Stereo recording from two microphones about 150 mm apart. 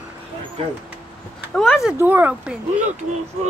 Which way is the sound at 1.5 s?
Centre (ahead or behind).